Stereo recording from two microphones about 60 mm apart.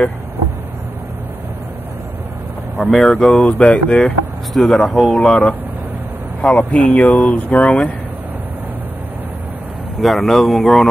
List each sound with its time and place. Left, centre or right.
2.8 s speech: centre
4.6 s speech: centre; by 7.9 s left
10.0 s speech: centre